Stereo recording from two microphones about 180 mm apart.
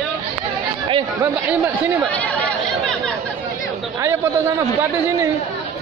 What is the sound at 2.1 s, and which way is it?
Chatter, 5° left (ahead or behind).